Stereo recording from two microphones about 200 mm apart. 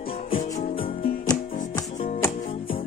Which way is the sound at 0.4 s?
30° left (ahead or behind).